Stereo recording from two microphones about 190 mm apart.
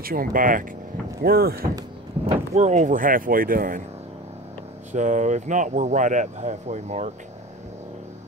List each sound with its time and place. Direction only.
0.0 s speech: 50° right (ahead or behind)
2.5 s speech: 35° right (ahead or behind)
4.9 s speech: 40° right (ahead or behind)